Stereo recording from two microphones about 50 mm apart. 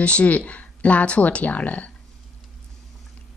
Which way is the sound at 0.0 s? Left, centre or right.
Left.